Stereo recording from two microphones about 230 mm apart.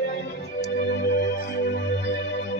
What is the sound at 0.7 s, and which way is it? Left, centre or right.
Music, left.